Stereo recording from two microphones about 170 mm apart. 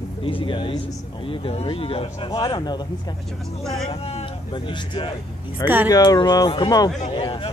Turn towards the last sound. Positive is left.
turn(degrees=30)  # may be behind; listen again after turning